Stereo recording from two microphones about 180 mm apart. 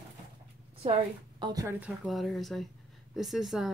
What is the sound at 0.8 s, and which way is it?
Speech, 30° right (ahead or behind).